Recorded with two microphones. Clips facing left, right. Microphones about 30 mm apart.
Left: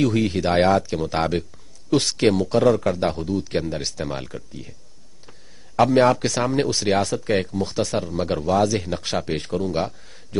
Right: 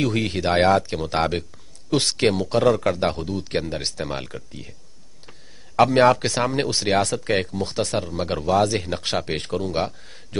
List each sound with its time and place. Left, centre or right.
0.0 s speech: centre
5.8 s a man's voice: centre